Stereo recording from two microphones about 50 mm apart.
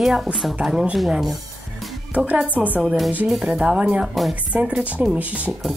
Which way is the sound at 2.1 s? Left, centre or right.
Right.